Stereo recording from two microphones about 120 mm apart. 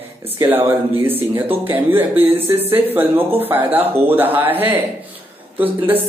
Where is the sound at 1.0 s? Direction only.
15° right (ahead or behind).